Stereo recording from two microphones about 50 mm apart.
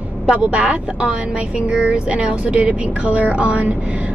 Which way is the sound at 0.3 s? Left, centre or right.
Right.